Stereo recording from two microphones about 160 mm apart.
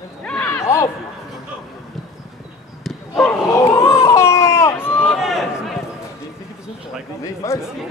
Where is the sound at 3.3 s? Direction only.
15° left (ahead or behind).